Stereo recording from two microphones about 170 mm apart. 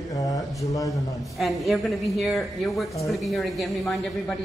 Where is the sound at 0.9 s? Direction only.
Centre (ahead or behind).